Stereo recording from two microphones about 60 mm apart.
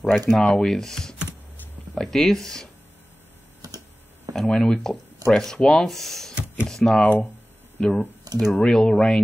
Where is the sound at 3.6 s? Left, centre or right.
Right.